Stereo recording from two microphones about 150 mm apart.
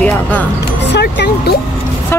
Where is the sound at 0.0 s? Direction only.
10° left (ahead or behind).